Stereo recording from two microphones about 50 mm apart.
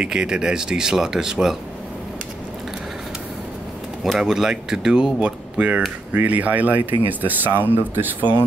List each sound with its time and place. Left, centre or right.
0.0 s speech: centre
4.0 s speech: centre; by 8.3 s right